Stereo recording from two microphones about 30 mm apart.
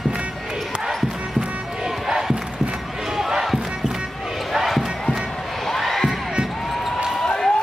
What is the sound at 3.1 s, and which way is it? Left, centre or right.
Crowd, centre.